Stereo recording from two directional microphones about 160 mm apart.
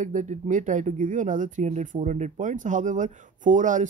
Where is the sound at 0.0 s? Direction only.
50° right (ahead or behind).